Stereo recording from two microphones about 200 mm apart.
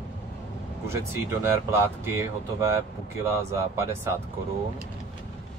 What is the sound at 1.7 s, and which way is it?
Speech, 15° right (ahead or behind).